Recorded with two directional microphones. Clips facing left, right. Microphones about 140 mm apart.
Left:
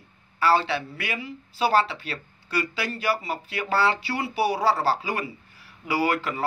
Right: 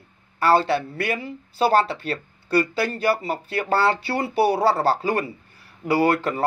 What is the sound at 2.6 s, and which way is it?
Speech, 50° right (ahead or behind).